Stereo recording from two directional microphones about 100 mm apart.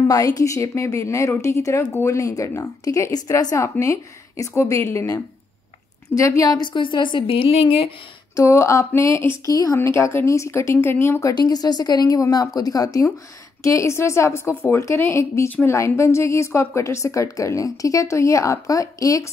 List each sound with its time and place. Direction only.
0.1 s a woman's voice: 35° left (ahead or behind)
6.0 s a woman's voice: 35° left (ahead or behind); by 7.9 s 65° left (ahead or behind)
8.4 s a sound: 30° left (ahead or behind)
9.5 s a woman's voice: 35° left (ahead or behind)
9.8 s a woman's voice: 25° left (ahead or behind)
13.6 s a sound: 30° left (ahead or behind)
16.0 s a woman's voice: 30° left (ahead or behind)